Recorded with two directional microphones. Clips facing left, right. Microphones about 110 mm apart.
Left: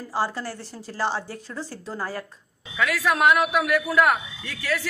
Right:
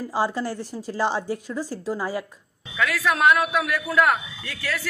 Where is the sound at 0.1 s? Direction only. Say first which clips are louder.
Right 2 dB; 15° right (ahead or behind).